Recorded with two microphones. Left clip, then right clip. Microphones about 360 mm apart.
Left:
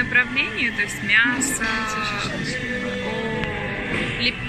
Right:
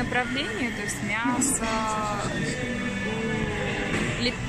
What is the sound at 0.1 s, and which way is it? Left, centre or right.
Speech, centre.